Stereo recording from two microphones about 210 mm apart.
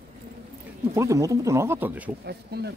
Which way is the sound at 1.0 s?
15° right (ahead or behind).